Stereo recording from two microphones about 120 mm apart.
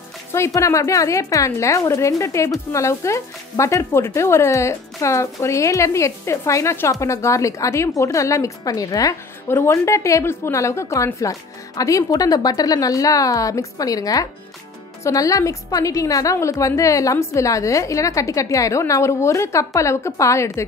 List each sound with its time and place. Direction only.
0.3 s a woman's voice: 25° left (ahead or behind)